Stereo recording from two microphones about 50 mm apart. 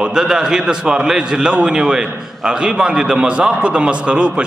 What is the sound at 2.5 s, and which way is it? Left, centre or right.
A man's voice, right.